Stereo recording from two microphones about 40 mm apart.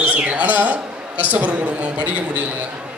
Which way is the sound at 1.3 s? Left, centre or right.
Right.